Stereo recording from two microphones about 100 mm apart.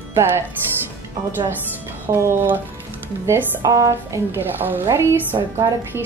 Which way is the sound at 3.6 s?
35° right (ahead or behind).